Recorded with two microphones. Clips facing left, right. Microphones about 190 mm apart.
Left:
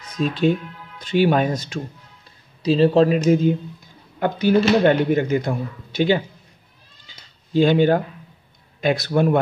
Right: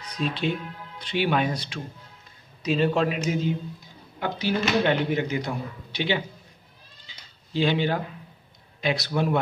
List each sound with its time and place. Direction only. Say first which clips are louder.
0.0 s speech: left 8 dB; 45° left (ahead or behind)
2.6 s speech: left 8 dB; 35° left (ahead or behind)
7.1 s cat: left 8 dB; 45° left (ahead or behind)
8.8 s speech: left 7 dB; 50° left (ahead or behind)